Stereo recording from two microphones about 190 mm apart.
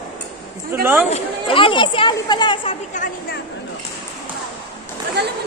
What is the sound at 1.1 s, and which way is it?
Speech, 30° left (ahead or behind).